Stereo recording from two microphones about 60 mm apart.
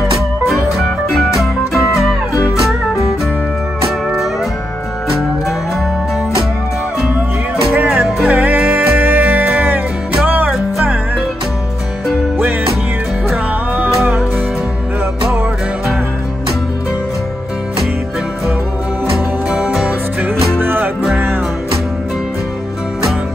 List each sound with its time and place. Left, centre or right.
0.5 s music: centre
7.7 s music: right
14.0 s music: right
20.3 s music: right